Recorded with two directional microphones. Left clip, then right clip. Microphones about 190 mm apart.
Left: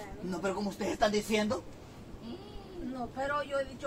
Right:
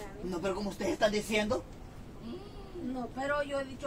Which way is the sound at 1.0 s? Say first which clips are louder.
Left 1 dB; centre (ahead or behind).